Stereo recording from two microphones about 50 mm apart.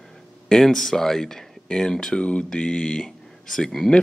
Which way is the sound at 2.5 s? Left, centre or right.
Left.